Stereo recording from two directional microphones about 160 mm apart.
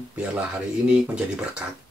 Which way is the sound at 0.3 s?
5° right (ahead or behind).